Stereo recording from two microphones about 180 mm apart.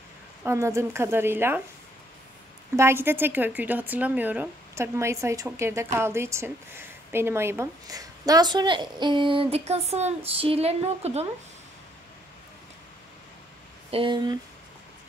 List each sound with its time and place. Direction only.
0.4 s speech: 15° right (ahead or behind)
2.7 s a woman's voice: 15° right (ahead or behind); by 11.2 s 35° right (ahead or behind)
13.8 s a woman's voice: 30° right (ahead or behind)